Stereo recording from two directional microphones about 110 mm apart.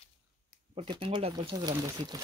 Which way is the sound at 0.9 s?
50° right (ahead or behind).